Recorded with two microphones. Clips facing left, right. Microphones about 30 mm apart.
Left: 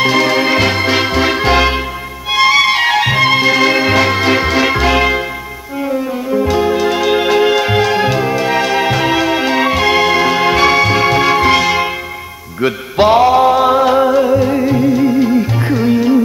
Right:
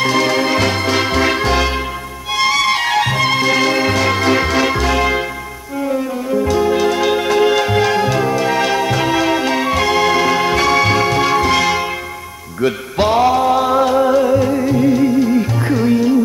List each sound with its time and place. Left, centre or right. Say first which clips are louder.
0.0 s music: left 3 dB; centre
6.3 s music: left 1 dB; left